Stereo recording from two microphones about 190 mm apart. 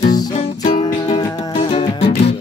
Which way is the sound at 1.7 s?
30° left (ahead or behind).